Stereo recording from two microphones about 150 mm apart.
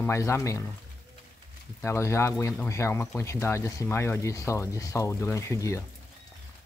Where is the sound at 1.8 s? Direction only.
20° left (ahead or behind).